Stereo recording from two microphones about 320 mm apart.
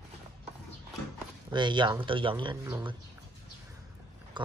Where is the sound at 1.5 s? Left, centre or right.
Centre.